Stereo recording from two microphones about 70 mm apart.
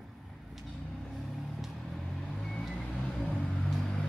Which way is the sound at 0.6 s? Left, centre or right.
Centre.